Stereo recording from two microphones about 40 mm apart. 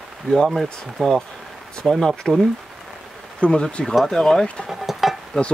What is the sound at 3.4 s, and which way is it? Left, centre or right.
Speech, left.